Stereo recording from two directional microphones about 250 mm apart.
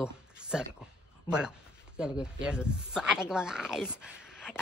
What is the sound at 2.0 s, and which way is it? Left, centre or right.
Speech, centre.